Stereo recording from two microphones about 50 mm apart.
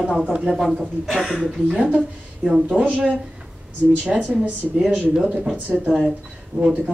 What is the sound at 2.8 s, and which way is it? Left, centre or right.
Speech, right.